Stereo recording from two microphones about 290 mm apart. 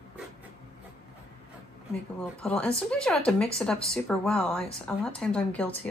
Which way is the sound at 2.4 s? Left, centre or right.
Centre.